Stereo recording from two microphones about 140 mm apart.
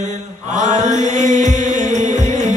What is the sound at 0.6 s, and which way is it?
Chant, 60° right (ahead or behind).